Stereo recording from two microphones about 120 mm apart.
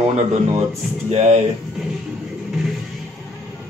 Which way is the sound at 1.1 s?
65° right (ahead or behind).